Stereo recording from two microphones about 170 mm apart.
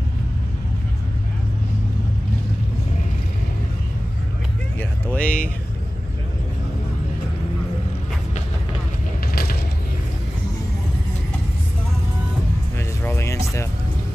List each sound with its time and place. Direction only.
5.0 s a sound: 5° left (ahead or behind)
9.3 s vehicle: 60° left (ahead or behind)
13.0 s music: 15° left (ahead or behind)